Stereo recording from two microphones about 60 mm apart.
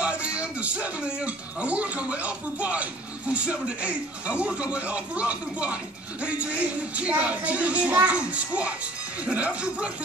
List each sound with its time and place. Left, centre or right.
0.0 s a man's voice: centre
7.0 s a man's voice: right